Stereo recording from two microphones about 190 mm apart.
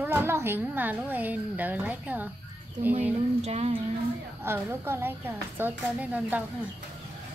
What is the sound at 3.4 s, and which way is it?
Speech, 35° right (ahead or behind).